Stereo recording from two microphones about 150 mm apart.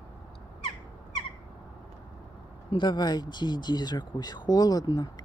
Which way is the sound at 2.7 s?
30° left (ahead or behind).